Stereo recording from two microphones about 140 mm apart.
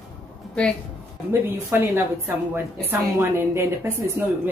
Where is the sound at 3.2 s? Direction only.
20° right (ahead or behind).